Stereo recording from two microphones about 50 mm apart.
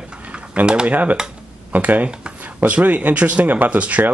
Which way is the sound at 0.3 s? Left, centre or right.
Right.